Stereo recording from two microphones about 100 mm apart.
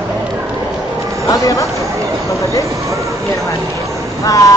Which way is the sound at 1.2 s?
35° left (ahead or behind).